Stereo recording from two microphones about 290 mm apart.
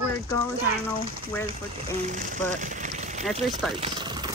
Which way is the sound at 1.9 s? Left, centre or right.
Right.